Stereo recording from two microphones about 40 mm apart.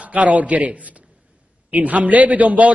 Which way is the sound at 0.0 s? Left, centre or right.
Right.